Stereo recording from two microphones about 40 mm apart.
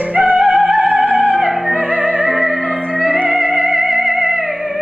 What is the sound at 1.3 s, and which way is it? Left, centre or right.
Music, centre.